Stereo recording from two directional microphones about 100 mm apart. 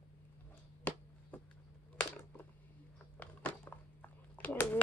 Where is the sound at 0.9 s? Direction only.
15° left (ahead or behind).